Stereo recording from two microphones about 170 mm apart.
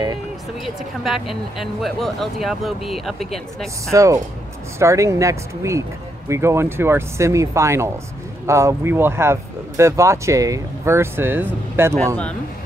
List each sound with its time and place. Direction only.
0.7 s speech: centre (ahead or behind)
3.9 s speech: 20° right (ahead or behind)